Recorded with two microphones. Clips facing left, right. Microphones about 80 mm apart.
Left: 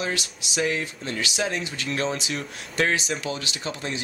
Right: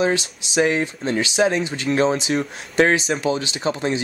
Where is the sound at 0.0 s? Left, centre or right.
Right.